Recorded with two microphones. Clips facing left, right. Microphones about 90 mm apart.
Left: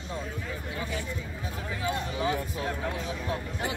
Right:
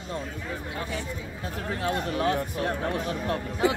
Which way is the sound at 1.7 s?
50° right (ahead or behind).